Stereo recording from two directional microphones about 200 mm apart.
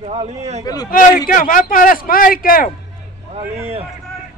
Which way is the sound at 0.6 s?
20° left (ahead or behind).